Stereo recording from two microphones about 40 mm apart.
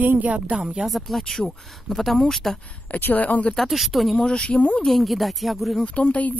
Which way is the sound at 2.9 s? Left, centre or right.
Left.